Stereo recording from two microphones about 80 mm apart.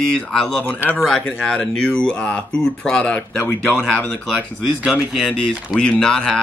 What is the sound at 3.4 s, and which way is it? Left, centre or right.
Speech, left.